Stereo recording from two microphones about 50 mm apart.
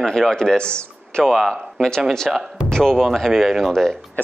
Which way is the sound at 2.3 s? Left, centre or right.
Centre.